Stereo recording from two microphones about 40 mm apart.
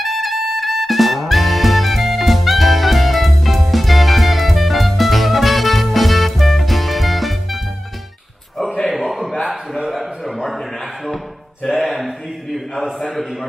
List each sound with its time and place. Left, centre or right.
0.0 s music: centre
8.8 s a sound: centre
11.6 s mantra: centre
12.8 s a man's voice: centre